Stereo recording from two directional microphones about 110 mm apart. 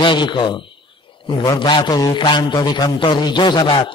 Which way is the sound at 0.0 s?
45° left (ahead or behind).